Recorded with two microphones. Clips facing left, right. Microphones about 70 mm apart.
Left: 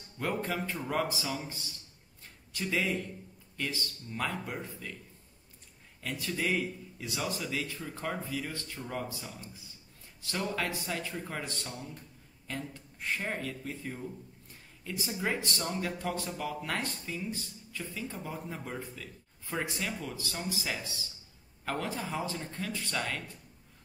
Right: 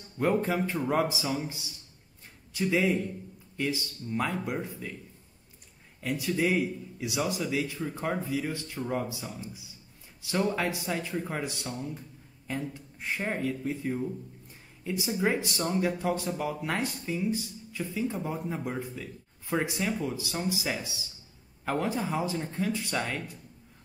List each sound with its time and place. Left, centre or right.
0.2 s speech: centre
6.0 s speech: centre